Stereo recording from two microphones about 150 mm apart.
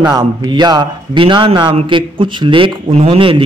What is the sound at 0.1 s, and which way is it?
A man's voice, 30° right (ahead or behind).